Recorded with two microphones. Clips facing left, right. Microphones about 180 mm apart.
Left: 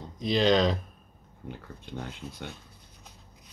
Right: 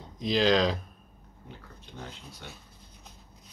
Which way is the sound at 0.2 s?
Centre (ahead or behind).